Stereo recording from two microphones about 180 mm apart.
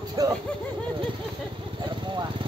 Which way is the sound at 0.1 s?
20° right (ahead or behind).